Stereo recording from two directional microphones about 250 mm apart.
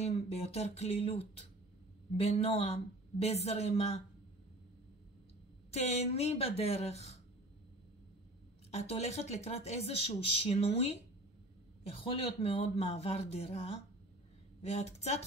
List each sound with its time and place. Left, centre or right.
0.0 s speech: left
5.7 s speech: left
8.7 s speech: left
12.2 s speech: left